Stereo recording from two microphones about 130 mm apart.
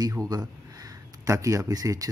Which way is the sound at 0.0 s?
25° right (ahead or behind).